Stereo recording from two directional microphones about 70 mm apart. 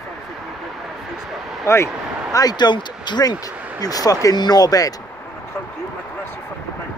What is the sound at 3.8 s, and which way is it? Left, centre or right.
Speech, left.